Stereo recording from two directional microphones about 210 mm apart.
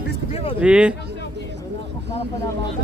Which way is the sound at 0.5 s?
5° right (ahead or behind).